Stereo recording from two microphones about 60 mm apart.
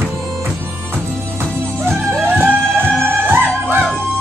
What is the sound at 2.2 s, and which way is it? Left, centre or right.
Music, right.